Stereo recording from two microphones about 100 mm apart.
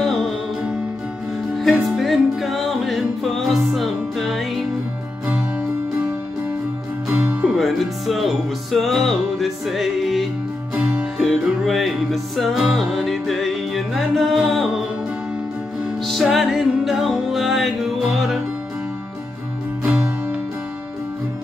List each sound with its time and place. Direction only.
0.0 s music: centre (ahead or behind)
1.6 s music: centre (ahead or behind)
7.1 s music: 15° right (ahead or behind)
7.5 s music: centre (ahead or behind)
10.8 s music: 10° right (ahead or behind)
11.1 s music: centre (ahead or behind)
16.1 s music: centre (ahead or behind)